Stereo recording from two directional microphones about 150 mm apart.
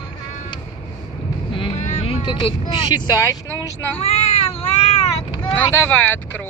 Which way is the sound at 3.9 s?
45° left (ahead or behind).